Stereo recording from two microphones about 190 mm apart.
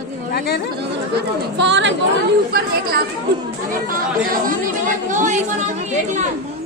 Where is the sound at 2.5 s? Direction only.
55° right (ahead or behind).